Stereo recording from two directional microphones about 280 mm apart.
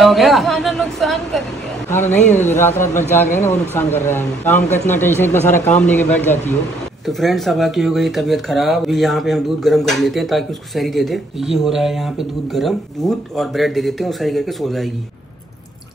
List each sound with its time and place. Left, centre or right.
0.0 s speech: centre
2.0 s a man's voice: left
2.6 s speech: centre
3.0 s a man's voice: left
5.0 s speech: centre
7.1 s speech: centre